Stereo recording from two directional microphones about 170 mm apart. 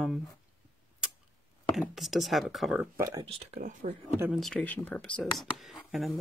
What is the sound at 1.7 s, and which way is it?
Speech, centre (ahead or behind).